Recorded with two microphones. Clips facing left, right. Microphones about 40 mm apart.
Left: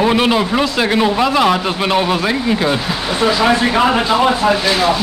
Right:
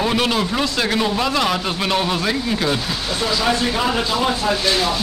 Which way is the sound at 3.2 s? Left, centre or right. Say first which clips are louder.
Left 6 dB; left.